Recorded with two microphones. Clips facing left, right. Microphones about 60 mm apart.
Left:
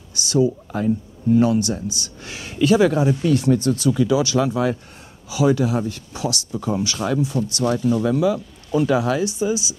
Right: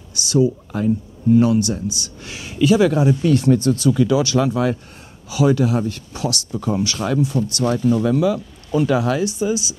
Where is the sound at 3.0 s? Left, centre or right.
Centre.